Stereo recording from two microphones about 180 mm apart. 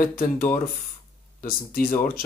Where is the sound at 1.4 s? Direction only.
55° left (ahead or behind).